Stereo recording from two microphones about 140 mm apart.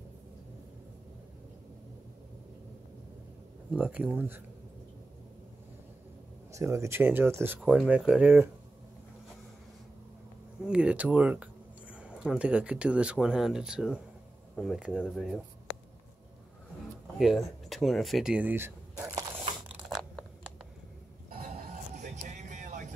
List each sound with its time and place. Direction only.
3.7 s speech: 10° right (ahead or behind)
6.5 s speech: 20° right (ahead or behind)
10.6 s speech: 5° right (ahead or behind)
17.2 s speech: centre (ahead or behind)
19.9 s tearing: 5° left (ahead or behind)
21.9 s vehicle: 55° right (ahead or behind)